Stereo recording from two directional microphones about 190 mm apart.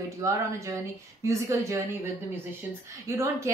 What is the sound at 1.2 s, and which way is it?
Speech, 15° right (ahead or behind).